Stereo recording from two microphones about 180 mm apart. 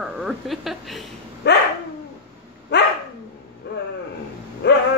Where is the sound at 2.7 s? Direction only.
70° left (ahead or behind).